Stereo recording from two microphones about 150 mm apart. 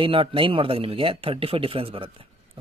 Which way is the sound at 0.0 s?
35° right (ahead or behind).